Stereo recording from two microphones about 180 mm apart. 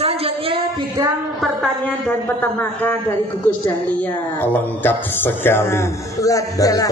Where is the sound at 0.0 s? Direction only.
30° right (ahead or behind).